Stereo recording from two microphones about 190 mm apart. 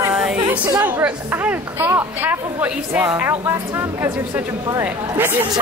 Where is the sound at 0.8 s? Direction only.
10° right (ahead or behind).